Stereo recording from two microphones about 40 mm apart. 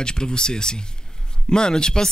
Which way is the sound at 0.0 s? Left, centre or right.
Left.